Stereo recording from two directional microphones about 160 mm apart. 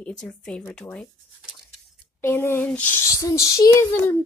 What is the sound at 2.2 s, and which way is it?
A child's voice, 15° left (ahead or behind).